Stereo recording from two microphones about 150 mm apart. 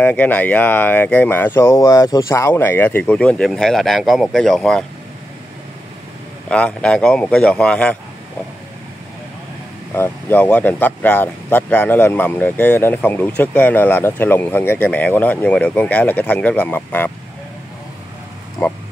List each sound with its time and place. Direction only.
0.0 s speech: 10° left (ahead or behind)
6.5 s speech: 5° left (ahead or behind)
9.9 s speech: 15° left (ahead or behind)